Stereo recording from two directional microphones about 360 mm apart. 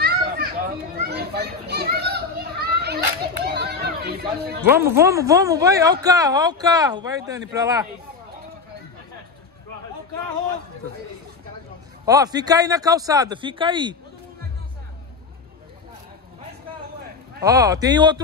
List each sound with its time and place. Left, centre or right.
0.0 s children playing: right
3.5 s chatter: right
4.6 s speech: centre
12.1 s speech: centre
17.5 s speech: centre